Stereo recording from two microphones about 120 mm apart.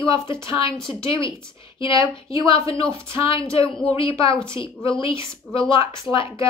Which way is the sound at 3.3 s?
50° left (ahead or behind).